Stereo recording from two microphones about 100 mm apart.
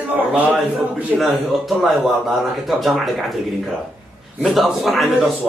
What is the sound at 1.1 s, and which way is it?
A man's voice, centre (ahead or behind).